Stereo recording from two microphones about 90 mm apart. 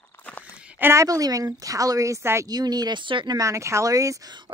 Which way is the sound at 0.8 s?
35° right (ahead or behind).